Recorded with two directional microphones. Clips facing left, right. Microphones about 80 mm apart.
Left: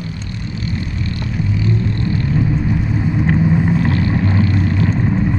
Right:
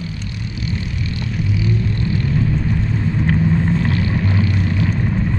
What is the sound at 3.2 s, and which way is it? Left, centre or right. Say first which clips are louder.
Vehicle: left 2 dB; centre.